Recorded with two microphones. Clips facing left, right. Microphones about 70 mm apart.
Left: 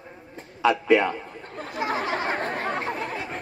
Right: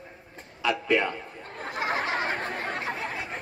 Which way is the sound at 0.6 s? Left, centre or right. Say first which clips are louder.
Left 5 dB; centre.